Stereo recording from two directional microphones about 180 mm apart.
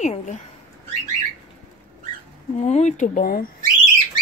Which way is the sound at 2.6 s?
40° left (ahead or behind).